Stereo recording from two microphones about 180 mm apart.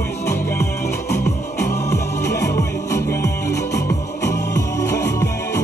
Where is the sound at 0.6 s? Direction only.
15° left (ahead or behind).